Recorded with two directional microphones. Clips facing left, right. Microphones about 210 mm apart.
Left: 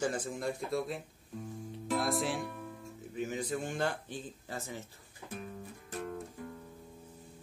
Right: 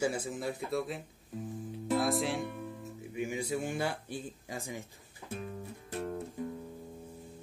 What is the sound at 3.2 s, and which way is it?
Speech, 10° right (ahead or behind).